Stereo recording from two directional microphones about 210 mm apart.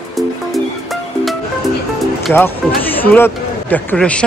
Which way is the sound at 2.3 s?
10° left (ahead or behind).